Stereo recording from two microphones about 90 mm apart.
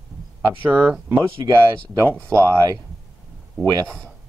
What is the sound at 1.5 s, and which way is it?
Speech, 45° right (ahead or behind).